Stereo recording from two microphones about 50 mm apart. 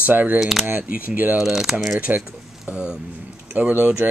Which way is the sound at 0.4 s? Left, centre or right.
Centre.